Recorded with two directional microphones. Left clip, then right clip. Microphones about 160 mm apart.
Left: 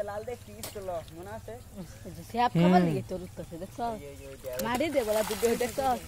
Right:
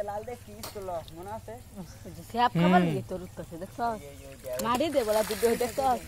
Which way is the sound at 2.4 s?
Centre (ahead or behind).